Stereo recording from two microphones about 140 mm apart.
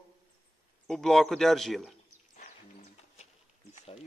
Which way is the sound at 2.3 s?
50° left (ahead or behind).